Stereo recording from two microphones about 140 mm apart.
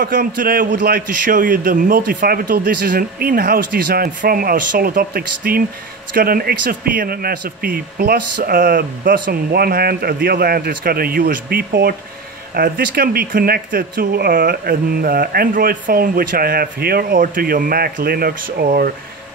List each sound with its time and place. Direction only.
0.0 s speech: 85° right